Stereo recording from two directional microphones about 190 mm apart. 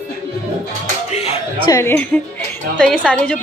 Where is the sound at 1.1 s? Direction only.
35° left (ahead or behind).